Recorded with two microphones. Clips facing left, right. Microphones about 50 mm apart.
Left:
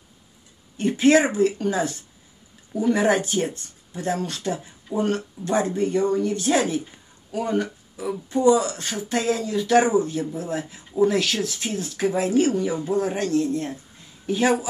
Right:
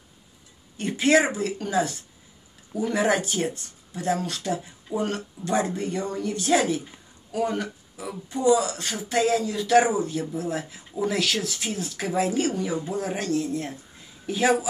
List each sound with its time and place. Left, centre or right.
0.7 s speech: centre